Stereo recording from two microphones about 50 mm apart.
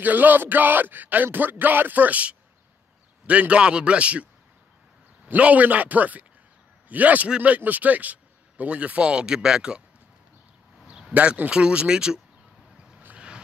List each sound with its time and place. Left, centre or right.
0.0 s speech: right
5.3 s speech: right
10.9 s a sound: centre
11.5 s speech: right
13.1 s vehicle: right